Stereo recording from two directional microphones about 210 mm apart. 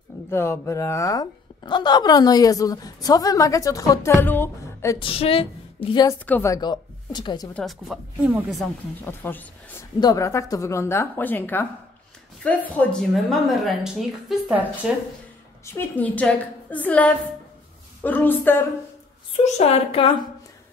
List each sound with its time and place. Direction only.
0.3 s a woman's voice: 10° left (ahead or behind)
6.2 s speech: 10° left (ahead or behind)
7.5 s speech: centre (ahead or behind)
9.0 s a woman's voice: 10° left (ahead or behind)
15.6 s a woman's voice: 10° left (ahead or behind)
19.4 s a woman's voice: 30° left (ahead or behind)